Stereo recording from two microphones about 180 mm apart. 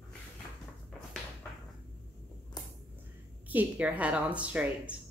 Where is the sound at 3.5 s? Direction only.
10° right (ahead or behind).